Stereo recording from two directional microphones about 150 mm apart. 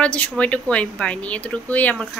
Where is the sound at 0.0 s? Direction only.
10° left (ahead or behind).